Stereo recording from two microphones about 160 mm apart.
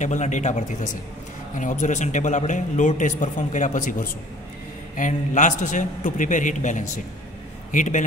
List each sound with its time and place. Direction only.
0.0 s a man's voice: 50° left (ahead or behind)